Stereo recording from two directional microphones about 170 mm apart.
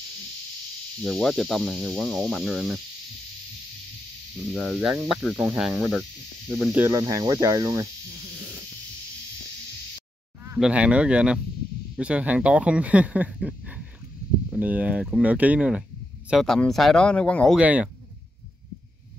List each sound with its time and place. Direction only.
1.0 s speech: centre (ahead or behind)
4.6 s speech: 5° right (ahead or behind)
6.7 s speech: 15° right (ahead or behind)
10.6 s speech: 5° right (ahead or behind)
17.6 s speech: 10° right (ahead or behind)